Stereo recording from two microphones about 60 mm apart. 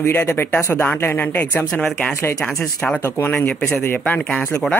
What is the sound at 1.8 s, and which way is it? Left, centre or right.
Speech, centre.